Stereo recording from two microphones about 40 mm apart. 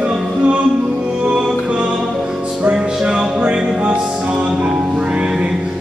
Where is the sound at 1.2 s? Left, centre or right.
Centre.